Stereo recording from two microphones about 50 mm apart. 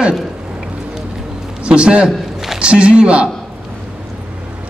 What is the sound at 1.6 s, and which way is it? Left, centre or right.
A man's voice, right.